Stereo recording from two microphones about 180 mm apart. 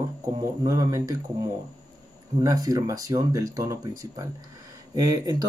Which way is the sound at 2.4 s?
20° right (ahead or behind).